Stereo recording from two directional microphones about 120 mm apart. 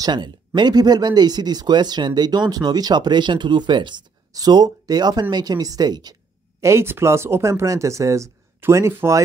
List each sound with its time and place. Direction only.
0.0 s speech: 40° right (ahead or behind)
6.6 s speech: 20° right (ahead or behind)